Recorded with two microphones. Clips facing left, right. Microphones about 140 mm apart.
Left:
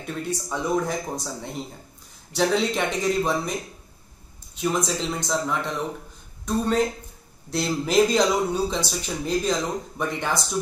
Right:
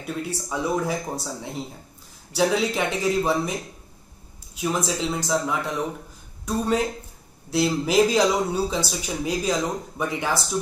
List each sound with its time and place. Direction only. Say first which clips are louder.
0.0 s speech: even; 5° right (ahead or behind)
4.6 s speech: even; 5° right (ahead or behind)